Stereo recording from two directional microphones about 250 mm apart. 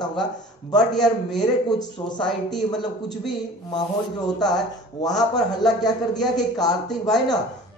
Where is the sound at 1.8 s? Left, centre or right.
Centre.